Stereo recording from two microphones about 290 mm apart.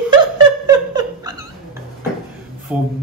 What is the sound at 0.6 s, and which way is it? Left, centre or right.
Laughter, centre.